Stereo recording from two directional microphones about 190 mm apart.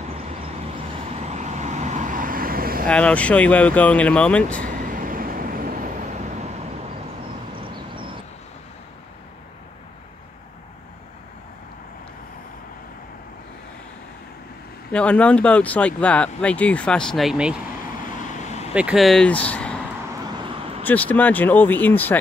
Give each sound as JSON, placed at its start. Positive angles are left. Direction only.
{"t": 0.7, "sound": "vehicle", "side_deg": -35}
{"t": 2.9, "sound": "speech", "side_deg": 5}
{"t": 4.9, "sound": "vehicle", "side_deg": -45}
{"t": 14.9, "sound": "speech", "side_deg": 5}
{"t": 18.7, "sound": "speech", "side_deg": -5}
{"t": 20.8, "sound": "speech", "side_deg": 10}